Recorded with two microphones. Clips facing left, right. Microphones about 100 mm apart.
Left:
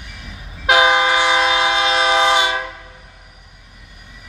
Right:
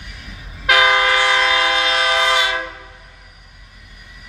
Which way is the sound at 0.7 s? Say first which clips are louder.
Left 1 dB; 20° left (ahead or behind).